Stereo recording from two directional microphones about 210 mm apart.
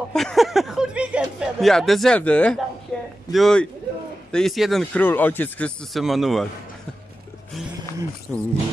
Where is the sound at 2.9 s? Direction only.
5° left (ahead or behind).